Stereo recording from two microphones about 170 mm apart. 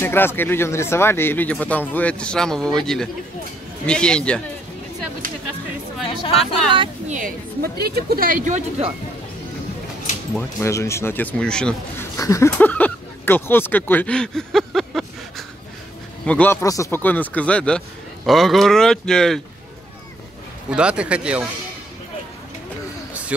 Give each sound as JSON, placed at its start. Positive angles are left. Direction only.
{"t": 0.0, "sound": "speech", "side_deg": 10}
{"t": 6.3, "sound": "speech", "side_deg": 0}
{"t": 7.1, "sound": "a woman's voice", "side_deg": -50}
{"t": 7.8, "sound": "speech", "side_deg": -65}
{"t": 10.3, "sound": "speech", "side_deg": 15}
{"t": 12.2, "sound": "speech", "side_deg": 20}
{"t": 14.6, "sound": "a sound", "side_deg": 0}
{"t": 16.3, "sound": "speech", "side_deg": 10}
{"t": 16.6, "sound": "speech", "side_deg": 20}
{"t": 20.7, "sound": "speech", "side_deg": -5}